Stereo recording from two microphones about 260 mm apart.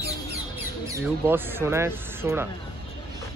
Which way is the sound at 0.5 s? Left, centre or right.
Centre.